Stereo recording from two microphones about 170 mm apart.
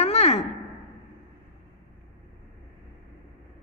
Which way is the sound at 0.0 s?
40° left (ahead or behind).